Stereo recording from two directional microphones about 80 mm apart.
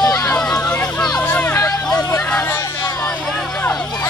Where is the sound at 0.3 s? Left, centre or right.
Centre.